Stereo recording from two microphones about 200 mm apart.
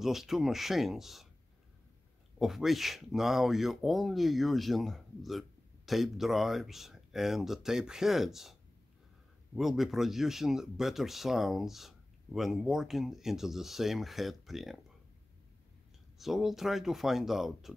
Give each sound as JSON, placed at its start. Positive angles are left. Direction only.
{"t": 0.0, "sound": "speech", "side_deg": 0}
{"t": 2.3, "sound": "speech", "side_deg": 0}
{"t": 9.6, "sound": "speech", "side_deg": 0}
{"t": 16.2, "sound": "speech", "side_deg": 0}